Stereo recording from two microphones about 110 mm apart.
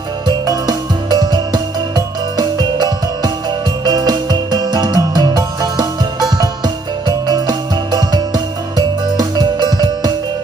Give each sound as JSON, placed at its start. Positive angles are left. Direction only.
{"t": 0.5, "sound": "music", "side_deg": -40}